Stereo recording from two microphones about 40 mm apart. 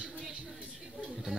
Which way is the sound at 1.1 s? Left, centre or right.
Centre.